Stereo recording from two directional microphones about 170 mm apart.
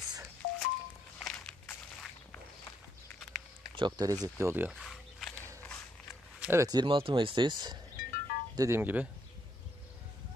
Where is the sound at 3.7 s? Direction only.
25° right (ahead or behind).